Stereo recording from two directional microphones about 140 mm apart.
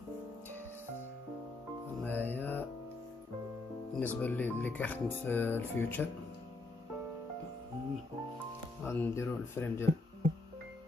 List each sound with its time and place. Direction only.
2.0 s music: 15° left (ahead or behind)
3.9 s speech: 10° left (ahead or behind)
8.8 s speech: 15° left (ahead or behind)